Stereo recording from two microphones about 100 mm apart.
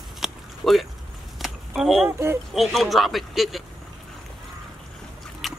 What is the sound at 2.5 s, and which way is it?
A woman's voice, centre (ahead or behind).